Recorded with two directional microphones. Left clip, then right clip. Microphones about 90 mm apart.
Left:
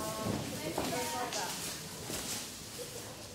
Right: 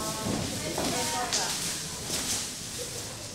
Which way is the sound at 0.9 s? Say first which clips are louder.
Right 6 dB; 5° right (ahead or behind).